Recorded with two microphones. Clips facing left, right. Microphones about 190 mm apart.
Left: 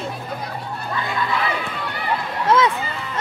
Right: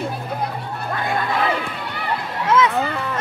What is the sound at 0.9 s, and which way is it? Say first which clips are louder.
Crowd: right 4 dB; 55° right (ahead or behind).